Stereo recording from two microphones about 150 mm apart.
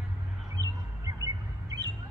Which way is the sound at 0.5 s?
20° right (ahead or behind).